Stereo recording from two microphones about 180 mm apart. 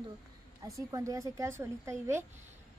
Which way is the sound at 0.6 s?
20° right (ahead or behind).